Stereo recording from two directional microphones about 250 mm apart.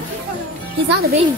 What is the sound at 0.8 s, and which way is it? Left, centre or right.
Speech, right.